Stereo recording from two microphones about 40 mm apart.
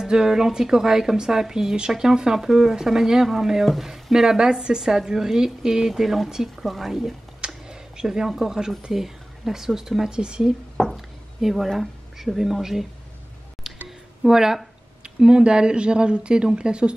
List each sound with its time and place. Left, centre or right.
0.0 s a woman's voice: centre
7.4 s a woman's voice: centre
10.9 s a sound: centre
11.7 s speech: centre
13.8 s music: centre
15.0 s speech: right